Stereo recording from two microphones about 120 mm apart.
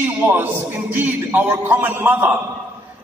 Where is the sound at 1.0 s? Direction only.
15° right (ahead or behind).